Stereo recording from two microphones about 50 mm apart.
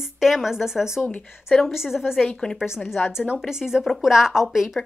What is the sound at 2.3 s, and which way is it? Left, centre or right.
Speech, centre.